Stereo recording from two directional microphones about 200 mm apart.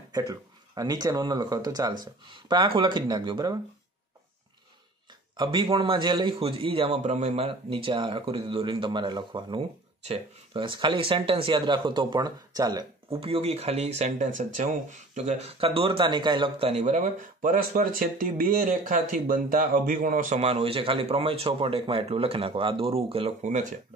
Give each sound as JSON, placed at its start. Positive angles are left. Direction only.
{"t": 0.1, "sound": "a man's voice", "side_deg": -20}
{"t": 5.3, "sound": "a man's voice", "side_deg": -20}